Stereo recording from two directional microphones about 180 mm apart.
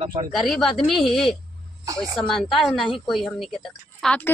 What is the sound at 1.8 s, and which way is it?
Speech, 20° right (ahead or behind).